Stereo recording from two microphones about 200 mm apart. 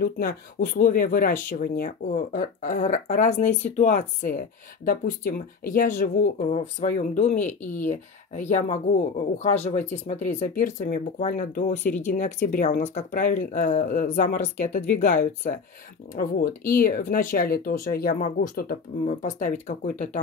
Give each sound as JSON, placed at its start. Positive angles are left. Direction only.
{"t": 0.0, "sound": "speech", "side_deg": 50}